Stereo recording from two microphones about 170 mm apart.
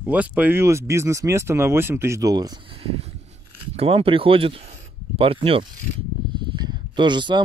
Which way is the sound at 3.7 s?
35° right (ahead or behind).